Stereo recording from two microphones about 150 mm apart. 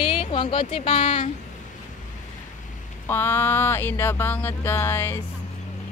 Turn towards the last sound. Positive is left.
turn(degrees=15)  # may be behind; listen again after turning